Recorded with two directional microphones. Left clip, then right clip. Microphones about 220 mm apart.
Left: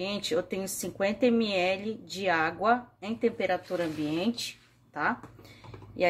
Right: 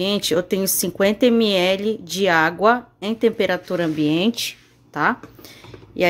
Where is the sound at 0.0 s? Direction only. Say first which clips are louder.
Right 10 dB; 50° right (ahead or behind).